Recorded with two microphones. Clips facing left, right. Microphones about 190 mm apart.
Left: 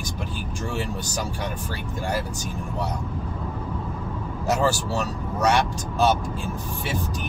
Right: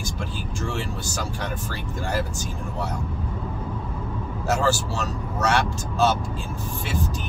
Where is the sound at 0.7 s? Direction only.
15° left (ahead or behind).